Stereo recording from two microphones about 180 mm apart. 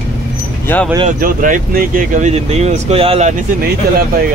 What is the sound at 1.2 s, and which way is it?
Speech, 50° right (ahead or behind).